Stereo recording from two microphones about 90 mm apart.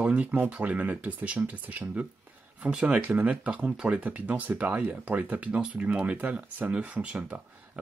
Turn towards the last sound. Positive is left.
turn(degrees=-15)  # may be behind; listen again after turning